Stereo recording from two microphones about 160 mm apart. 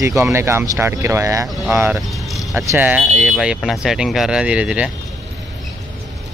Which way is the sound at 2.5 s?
15° right (ahead or behind).